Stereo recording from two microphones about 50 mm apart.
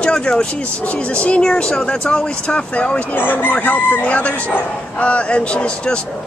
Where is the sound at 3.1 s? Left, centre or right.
Left.